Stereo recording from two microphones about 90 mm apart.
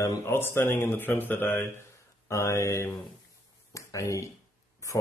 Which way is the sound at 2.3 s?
35° left (ahead or behind).